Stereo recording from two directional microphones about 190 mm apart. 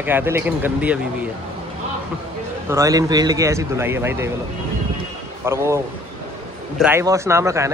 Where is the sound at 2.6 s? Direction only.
15° right (ahead or behind).